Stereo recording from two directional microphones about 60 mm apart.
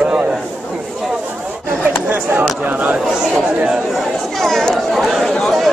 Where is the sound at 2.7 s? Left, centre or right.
Right.